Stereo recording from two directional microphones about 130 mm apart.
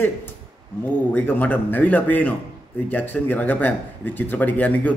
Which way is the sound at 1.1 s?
15° left (ahead or behind).